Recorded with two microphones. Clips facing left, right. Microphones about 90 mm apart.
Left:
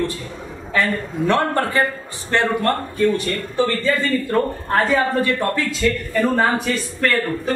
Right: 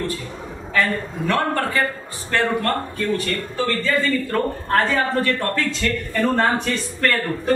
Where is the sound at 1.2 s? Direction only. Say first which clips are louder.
Left 3 dB; 25° left (ahead or behind).